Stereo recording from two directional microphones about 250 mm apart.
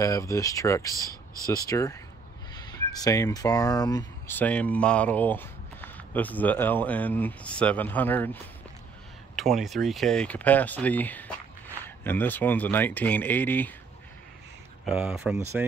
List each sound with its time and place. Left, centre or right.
0.0 s speech: centre
14.9 s speech: centre